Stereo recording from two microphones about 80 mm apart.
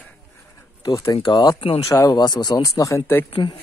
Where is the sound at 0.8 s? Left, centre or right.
Left.